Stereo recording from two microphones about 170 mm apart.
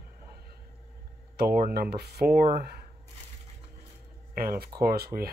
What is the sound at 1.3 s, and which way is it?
Speech, 65° right (ahead or behind).